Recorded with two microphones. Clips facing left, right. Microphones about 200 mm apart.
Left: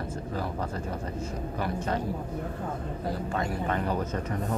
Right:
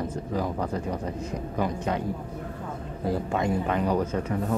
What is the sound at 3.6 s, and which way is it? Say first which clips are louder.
Speech: right 4 dB; 10° right (ahead or behind).